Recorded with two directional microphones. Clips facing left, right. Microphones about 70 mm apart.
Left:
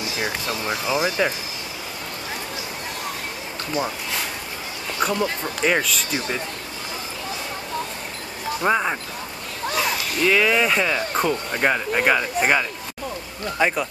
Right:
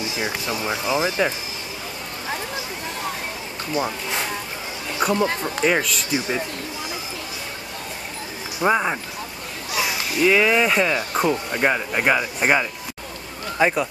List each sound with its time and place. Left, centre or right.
0.0 s speech: right
3.7 s speech: right
5.0 s speech: centre
6.1 s speech: centre
8.5 s speech: centre